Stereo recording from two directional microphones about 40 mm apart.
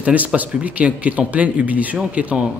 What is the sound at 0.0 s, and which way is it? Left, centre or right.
Speech, right.